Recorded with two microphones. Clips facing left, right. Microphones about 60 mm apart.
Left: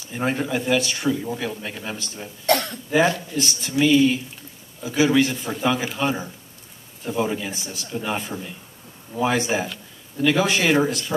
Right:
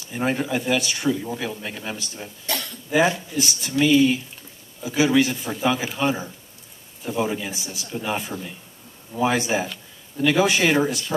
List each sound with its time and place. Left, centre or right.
0.1 s speech: centre
2.4 s cough: left
2.9 s speech: centre